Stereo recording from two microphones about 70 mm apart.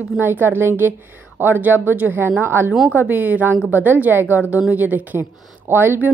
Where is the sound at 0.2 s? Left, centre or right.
Right.